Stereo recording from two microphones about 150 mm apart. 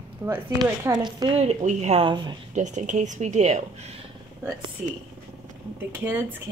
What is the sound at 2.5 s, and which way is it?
A woman's voice, 55° right (ahead or behind).